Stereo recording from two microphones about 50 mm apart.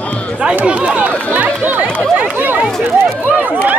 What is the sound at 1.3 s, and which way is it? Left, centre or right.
Speech, right.